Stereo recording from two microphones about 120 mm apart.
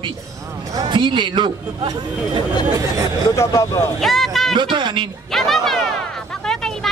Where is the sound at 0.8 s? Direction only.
40° right (ahead or behind).